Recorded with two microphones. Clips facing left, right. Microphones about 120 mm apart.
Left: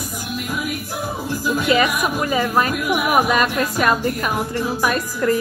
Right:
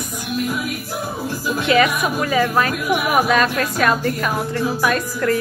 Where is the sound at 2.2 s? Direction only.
20° left (ahead or behind).